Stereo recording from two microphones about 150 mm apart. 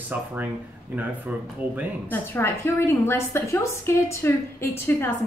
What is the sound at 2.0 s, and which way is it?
A woman's voice, 15° left (ahead or behind).